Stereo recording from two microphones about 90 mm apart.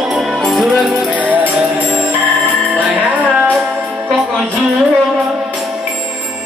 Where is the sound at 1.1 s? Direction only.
20° right (ahead or behind).